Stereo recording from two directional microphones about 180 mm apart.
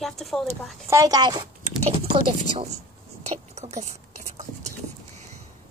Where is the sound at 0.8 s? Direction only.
20° right (ahead or behind); by 3.8 s 35° right (ahead or behind).